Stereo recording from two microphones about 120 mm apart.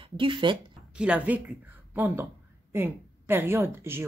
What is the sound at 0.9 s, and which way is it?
A woman's voice, 10° right (ahead or behind).